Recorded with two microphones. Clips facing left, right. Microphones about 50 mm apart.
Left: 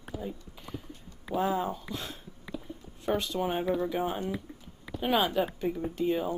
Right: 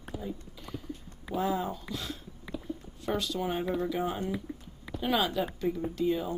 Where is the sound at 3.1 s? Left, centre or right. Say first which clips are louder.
Even; left.